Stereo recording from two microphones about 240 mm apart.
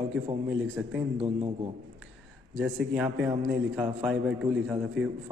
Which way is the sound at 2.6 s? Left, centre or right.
Centre.